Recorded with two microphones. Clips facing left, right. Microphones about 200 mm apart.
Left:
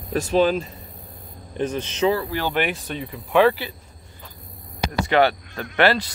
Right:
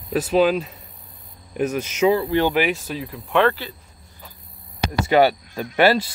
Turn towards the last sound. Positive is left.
turn(degrees=-10)  # may be behind; listen again after turning